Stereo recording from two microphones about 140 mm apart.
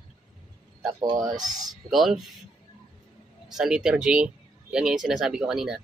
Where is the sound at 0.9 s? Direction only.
30° right (ahead or behind).